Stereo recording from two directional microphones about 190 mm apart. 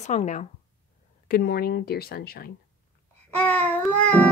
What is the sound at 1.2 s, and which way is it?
Speech, 55° left (ahead or behind).